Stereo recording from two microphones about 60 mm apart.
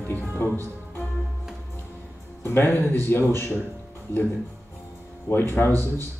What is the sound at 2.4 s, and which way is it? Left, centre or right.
Speech, left.